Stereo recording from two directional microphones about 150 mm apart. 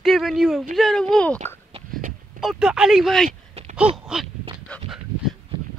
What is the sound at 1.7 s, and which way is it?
Hiccup, 45° right (ahead or behind).